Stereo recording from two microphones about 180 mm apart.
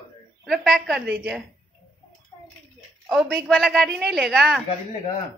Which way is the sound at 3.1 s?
5° right (ahead or behind).